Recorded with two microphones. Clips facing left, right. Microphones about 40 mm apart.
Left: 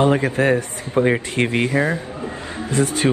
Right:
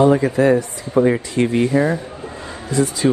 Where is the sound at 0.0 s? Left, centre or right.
Left.